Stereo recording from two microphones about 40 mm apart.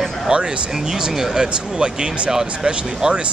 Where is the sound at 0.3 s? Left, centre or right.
Right.